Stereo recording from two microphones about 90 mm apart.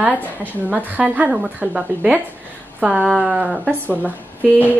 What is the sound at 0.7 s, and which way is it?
A woman's voice, 20° right (ahead or behind).